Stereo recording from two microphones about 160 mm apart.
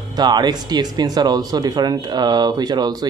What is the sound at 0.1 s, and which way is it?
Speech, 25° right (ahead or behind).